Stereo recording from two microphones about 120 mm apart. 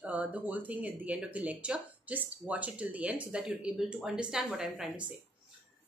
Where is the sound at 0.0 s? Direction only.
10° right (ahead or behind).